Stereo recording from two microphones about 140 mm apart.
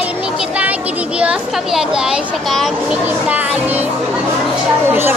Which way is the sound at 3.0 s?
10° right (ahead or behind).